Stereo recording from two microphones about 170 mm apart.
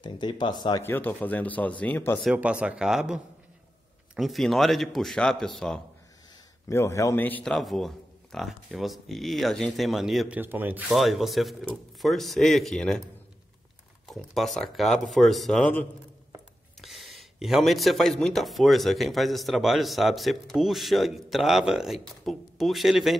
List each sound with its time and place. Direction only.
0.0 s speech: 25° left (ahead or behind)
0.8 s speech: 10° left (ahead or behind)
2.3 s speech: 5° right (ahead or behind)
6.7 s speech: 15° left (ahead or behind)
14.0 s speech: centre (ahead or behind)
16.8 s speech: centre (ahead or behind)